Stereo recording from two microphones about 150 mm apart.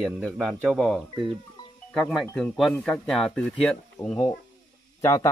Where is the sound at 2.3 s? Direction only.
5° left (ahead or behind).